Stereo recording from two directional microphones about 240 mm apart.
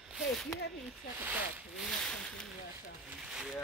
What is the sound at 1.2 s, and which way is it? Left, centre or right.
Speech, centre.